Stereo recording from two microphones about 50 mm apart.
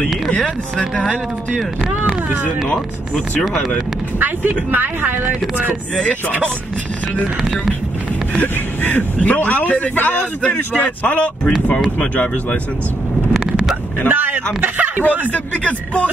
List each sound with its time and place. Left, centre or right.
4.2 s speech: right
5.9 s speech: left
7.4 s speech: centre
8.4 s speech: left
14.0 s a sound: right
15.0 s speech: left